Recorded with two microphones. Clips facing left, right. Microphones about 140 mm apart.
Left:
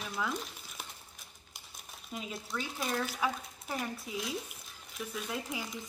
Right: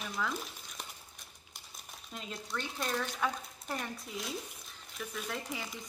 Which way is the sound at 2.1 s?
5° left (ahead or behind).